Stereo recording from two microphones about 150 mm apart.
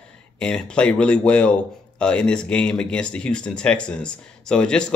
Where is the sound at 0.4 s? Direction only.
5° left (ahead or behind).